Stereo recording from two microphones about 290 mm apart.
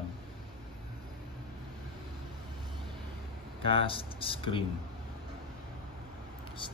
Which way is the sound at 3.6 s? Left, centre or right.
Right.